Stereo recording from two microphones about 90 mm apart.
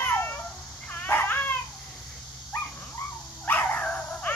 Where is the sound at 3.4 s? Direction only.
20° left (ahead or behind).